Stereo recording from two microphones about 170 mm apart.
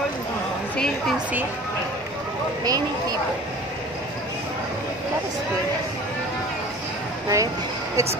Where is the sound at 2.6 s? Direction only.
20° right (ahead or behind).